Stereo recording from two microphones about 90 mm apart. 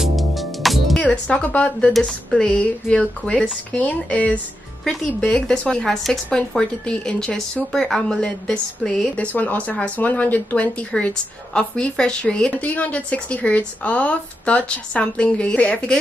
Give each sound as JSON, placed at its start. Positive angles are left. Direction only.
{"t": 0.0, "sound": "music", "side_deg": 0}
{"t": 1.0, "sound": "a woman's voice", "side_deg": 10}